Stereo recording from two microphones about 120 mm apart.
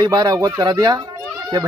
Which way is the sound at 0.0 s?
30° right (ahead or behind).